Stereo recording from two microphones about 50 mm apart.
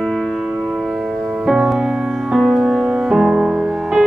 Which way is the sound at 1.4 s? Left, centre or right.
Centre.